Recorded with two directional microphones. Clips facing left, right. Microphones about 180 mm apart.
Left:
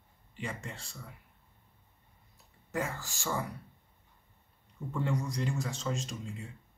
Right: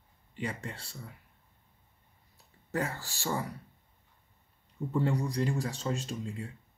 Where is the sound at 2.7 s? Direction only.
35° right (ahead or behind).